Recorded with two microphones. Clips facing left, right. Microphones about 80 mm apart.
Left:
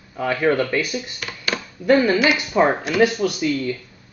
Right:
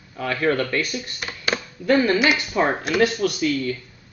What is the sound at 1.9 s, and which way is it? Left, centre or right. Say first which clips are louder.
Speech: left 2 dB; centre.